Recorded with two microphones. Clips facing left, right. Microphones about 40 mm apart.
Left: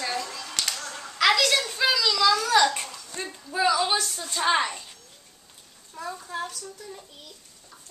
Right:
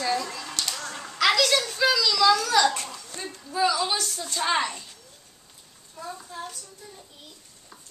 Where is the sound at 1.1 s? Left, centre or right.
Centre; by 4.0 s left.